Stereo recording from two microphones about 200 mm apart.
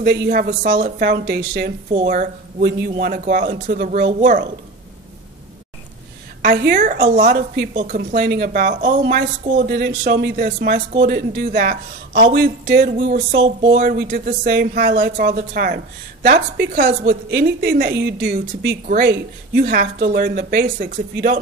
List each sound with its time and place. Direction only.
0.0 s speech: 55° right (ahead or behind)
6.4 s speech: 50° right (ahead or behind)